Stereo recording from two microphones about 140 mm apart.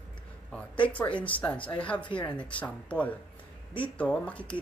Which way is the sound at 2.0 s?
35° left (ahead or behind).